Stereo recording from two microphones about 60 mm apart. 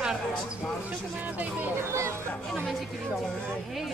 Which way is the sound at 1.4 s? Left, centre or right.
Right.